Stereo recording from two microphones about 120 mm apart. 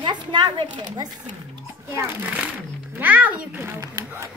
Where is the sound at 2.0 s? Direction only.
15° right (ahead or behind).